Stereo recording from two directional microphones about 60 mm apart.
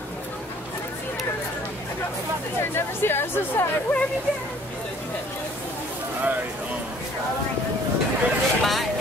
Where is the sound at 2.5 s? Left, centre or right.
Left.